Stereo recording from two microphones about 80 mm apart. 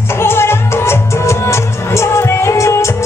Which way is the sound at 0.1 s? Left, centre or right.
Left.